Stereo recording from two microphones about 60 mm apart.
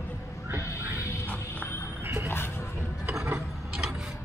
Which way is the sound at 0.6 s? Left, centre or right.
Left.